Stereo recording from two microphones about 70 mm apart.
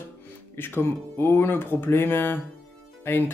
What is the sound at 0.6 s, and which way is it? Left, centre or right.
Speech, left.